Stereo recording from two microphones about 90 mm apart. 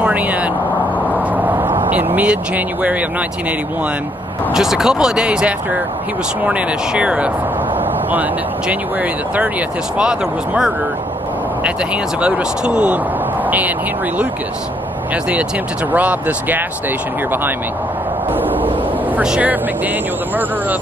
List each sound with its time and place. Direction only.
0.0 s vehicle: 15° right (ahead or behind)
1.1 s a sound: 20° right (ahead or behind)
2.1 s speech: 15° right (ahead or behind)
4.6 s speech: 5° right (ahead or behind)
15.9 s speech: 15° right (ahead or behind)
18.3 s a sound: 20° right (ahead or behind)
19.1 s speech: 15° right (ahead or behind)